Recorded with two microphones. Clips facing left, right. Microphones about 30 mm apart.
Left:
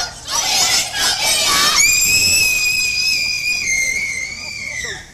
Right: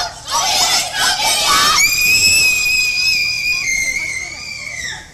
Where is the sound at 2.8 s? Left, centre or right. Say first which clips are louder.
Right 2 dB; centre.